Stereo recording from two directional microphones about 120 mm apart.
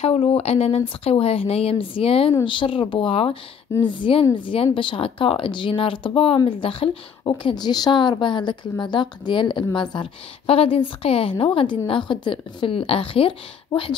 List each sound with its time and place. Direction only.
0.0 s speech: 50° left (ahead or behind)